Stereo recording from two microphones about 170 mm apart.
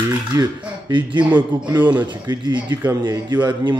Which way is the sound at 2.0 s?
25° right (ahead or behind).